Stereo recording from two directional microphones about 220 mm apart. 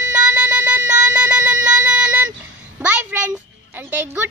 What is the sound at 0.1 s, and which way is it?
Music, 10° right (ahead or behind).